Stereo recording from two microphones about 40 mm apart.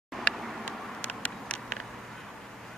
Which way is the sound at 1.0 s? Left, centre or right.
Left.